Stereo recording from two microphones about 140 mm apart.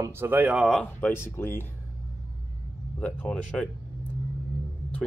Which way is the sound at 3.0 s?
10° left (ahead or behind).